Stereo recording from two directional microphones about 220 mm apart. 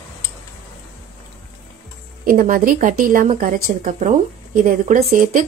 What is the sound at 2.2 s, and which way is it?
A woman's voice, 40° right (ahead or behind).